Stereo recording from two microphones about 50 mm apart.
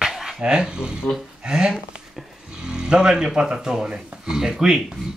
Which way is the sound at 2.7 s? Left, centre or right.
Centre.